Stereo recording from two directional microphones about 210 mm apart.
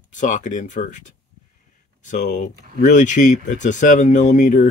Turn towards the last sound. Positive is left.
turn(degrees=35)  # may be behind; listen again after turning